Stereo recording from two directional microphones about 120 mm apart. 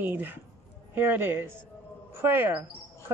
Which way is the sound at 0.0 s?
15° right (ahead or behind).